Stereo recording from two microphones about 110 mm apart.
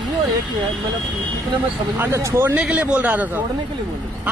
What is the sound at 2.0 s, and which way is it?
Speech, 25° right (ahead or behind).